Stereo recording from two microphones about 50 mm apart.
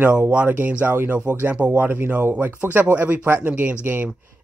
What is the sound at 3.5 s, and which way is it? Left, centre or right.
Speech, right.